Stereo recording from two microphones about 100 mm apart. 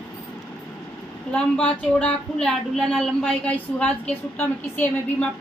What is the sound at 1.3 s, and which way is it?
Speech, 15° left (ahead or behind).